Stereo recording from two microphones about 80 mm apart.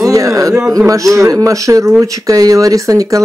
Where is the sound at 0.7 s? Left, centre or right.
Right.